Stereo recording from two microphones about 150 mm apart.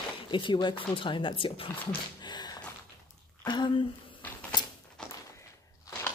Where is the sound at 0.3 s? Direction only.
30° left (ahead or behind).